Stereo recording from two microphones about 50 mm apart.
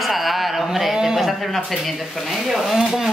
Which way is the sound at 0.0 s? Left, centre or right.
Centre.